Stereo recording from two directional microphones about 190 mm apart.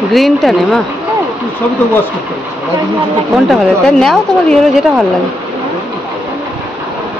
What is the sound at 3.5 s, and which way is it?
A woman's voice, centre (ahead or behind).